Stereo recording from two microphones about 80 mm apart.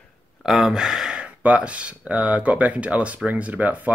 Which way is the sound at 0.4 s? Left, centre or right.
Centre.